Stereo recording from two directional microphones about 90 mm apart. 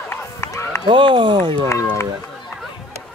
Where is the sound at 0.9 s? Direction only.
65° right (ahead or behind).